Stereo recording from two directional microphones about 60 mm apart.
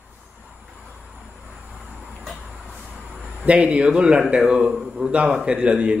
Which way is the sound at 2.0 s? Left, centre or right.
Centre.